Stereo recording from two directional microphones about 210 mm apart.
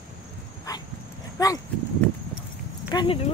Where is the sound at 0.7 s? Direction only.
15° left (ahead or behind).